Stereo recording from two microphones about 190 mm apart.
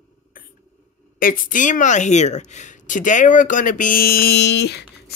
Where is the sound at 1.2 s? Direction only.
45° left (ahead or behind).